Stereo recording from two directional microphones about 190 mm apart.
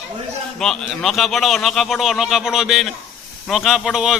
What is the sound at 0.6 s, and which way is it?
A man's voice, 5° left (ahead or behind).